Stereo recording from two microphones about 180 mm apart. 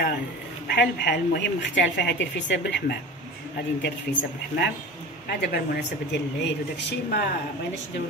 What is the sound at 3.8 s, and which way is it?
Speech, 70° left (ahead or behind).